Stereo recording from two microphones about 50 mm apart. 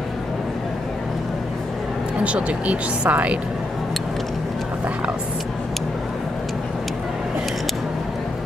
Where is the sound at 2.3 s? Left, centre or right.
Right.